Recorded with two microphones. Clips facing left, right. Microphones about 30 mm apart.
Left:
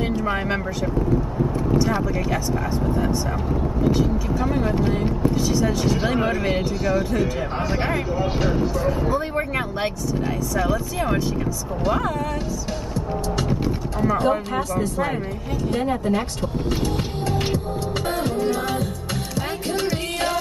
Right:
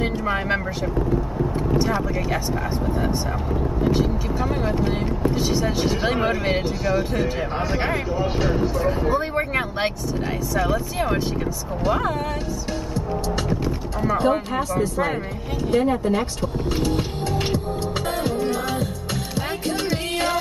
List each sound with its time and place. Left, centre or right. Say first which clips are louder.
0.0 s speech: even; centre
1.9 s speech: left 1 dB; centre
4.4 s speech: left 1 dB; centre
5.3 s speech: left 1 dB; centre
8.7 s speech: right 1 dB; centre
10.7 s speech: even; centre
12.1 s speech: even; centre
13.4 s speech: left 1 dB; centre
15.7 s speech: right 3 dB; centre
16.3 s music: even; centre
19.9 s music: right 1 dB; centre